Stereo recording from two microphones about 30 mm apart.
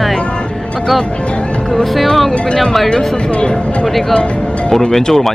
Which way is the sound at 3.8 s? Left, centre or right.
Centre.